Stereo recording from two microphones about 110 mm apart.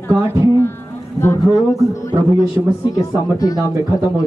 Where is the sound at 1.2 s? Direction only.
25° left (ahead or behind).